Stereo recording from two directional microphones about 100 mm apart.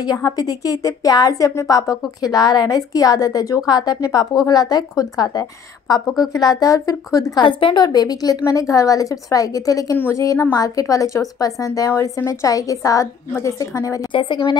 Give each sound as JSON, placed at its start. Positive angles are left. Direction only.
{"t": 0.0, "sound": "a woman's voice", "side_deg": 35}
{"t": 7.4, "sound": "a woman's voice", "side_deg": 50}
{"t": 14.1, "sound": "a woman's voice", "side_deg": 55}